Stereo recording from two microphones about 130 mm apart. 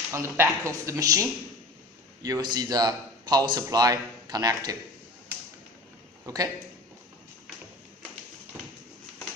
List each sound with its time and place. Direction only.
0.1 s speech: 20° right (ahead or behind)
2.2 s speech: 30° right (ahead or behind)
6.2 s a man's voice: 30° right (ahead or behind)
8.5 s a sound: 20° right (ahead or behind)